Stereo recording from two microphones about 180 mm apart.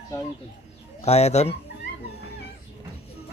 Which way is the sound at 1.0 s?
35° left (ahead or behind).